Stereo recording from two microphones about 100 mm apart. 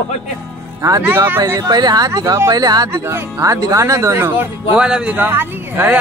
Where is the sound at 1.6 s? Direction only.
45° right (ahead or behind); by 4.5 s 25° right (ahead or behind).